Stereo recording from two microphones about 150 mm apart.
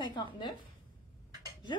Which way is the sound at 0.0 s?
30° left (ahead or behind).